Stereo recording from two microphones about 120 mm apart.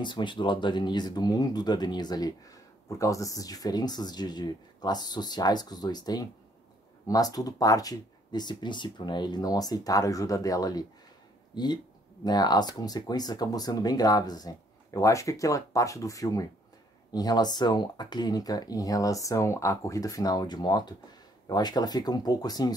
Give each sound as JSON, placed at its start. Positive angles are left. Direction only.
{"t": 0.0, "sound": "speech", "side_deg": 40}